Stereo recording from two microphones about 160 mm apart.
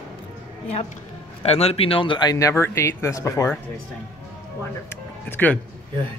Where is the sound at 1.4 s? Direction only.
40° left (ahead or behind); by 3.5 s 20° left (ahead or behind).